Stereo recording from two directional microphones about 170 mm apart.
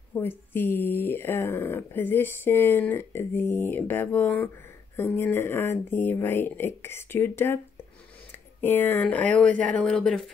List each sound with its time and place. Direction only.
0.1 s speech: 10° left (ahead or behind)